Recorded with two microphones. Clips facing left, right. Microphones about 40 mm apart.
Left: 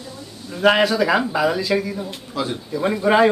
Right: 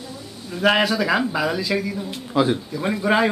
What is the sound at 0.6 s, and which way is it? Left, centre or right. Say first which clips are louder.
A man's voice: left 2 dB; centre.